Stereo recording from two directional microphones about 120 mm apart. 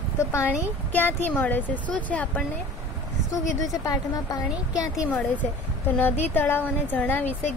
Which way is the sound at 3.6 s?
30° left (ahead or behind).